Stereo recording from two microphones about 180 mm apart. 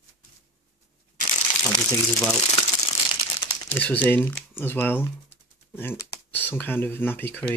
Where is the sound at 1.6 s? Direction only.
15° left (ahead or behind).